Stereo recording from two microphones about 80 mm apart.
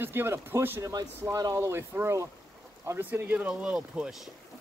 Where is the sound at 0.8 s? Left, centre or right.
Right.